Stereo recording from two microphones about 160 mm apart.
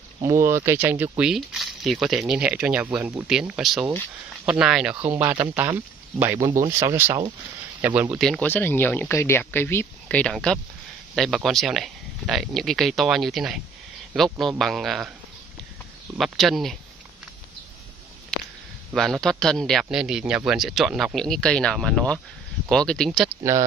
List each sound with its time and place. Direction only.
0.2 s speech: 20° right (ahead or behind)
8.2 s speech: 5° left (ahead or behind)
14.6 s speech: centre (ahead or behind)
16.2 s speech: centre (ahead or behind)
18.9 s speech: centre (ahead or behind)